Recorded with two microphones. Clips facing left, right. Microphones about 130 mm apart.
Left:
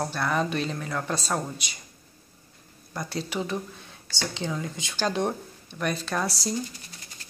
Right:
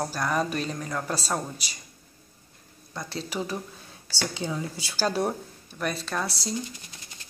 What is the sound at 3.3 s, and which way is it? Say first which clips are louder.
Speech: left 1 dB; 5° right (ahead or behind).